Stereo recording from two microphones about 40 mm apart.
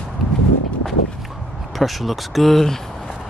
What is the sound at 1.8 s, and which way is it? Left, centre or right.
Speech, centre.